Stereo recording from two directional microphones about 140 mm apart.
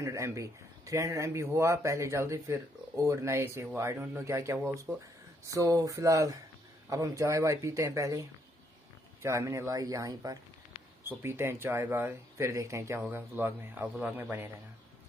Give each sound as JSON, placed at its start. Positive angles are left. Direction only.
{"t": 0.0, "sound": "speech", "side_deg": -20}